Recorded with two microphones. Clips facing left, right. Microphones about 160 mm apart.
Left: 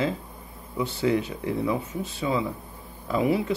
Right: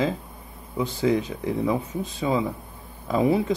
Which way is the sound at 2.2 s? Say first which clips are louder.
Right 2 dB; 30° right (ahead or behind).